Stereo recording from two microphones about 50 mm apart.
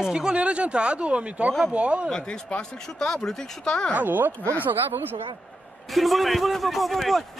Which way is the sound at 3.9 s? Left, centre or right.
Right.